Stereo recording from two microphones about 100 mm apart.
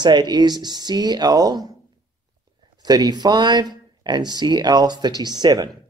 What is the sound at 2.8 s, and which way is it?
Speech, 40° right (ahead or behind).